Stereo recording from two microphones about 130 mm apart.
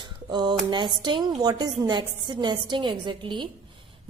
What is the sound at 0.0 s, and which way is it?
A woman's voice, 35° right (ahead or behind).